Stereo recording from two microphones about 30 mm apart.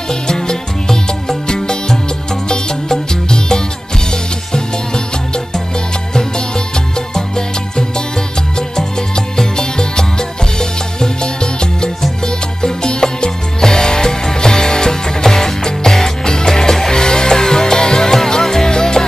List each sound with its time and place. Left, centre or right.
0.1 s music: left
7.2 s music: left
12.6 s music: left